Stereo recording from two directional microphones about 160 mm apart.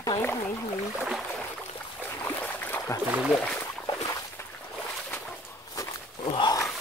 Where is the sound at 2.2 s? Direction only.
10° left (ahead or behind).